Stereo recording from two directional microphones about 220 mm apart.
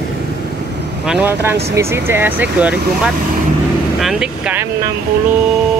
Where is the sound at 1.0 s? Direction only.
5° right (ahead or behind).